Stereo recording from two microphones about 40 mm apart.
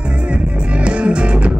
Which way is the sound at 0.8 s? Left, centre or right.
Right.